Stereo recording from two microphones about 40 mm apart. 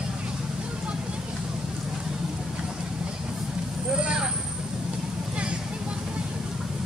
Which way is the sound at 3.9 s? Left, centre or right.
Right.